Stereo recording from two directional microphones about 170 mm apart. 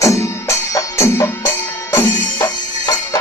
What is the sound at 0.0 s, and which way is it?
Music, 20° left (ahead or behind).